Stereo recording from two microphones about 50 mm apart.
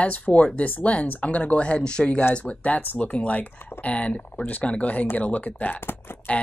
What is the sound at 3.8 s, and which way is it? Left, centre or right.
Speech, left.